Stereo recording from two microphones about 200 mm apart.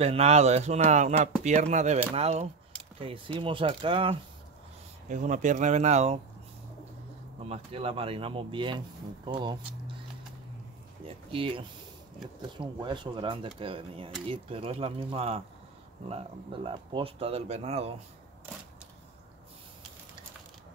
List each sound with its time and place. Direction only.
0.0 s speech: 30° right (ahead or behind)
5.0 s speech: 40° right (ahead or behind)
7.4 s speech: 30° right (ahead or behind)
11.3 s speech: 25° right (ahead or behind)